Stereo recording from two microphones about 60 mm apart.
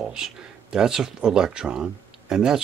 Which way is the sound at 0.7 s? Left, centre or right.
Centre.